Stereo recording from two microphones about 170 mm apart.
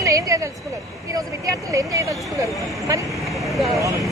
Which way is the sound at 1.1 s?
20° right (ahead or behind).